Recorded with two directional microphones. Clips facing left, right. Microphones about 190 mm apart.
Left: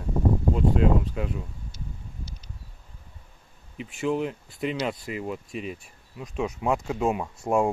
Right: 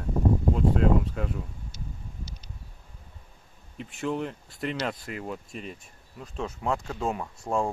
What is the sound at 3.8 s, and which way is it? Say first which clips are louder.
Speech: left 4 dB; centre (ahead or behind).